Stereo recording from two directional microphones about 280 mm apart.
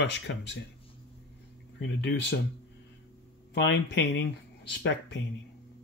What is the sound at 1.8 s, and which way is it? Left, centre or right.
Speech, left.